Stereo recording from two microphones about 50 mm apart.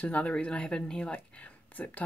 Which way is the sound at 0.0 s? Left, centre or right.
Left.